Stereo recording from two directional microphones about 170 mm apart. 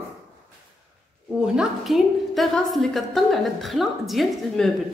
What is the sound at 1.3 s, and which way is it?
A woman's voice, 5° right (ahead or behind).